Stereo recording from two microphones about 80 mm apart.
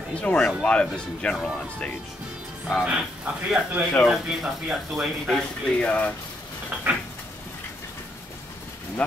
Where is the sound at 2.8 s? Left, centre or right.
Centre.